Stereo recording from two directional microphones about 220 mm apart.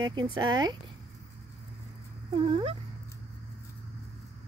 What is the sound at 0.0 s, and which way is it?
Speech, 20° right (ahead or behind).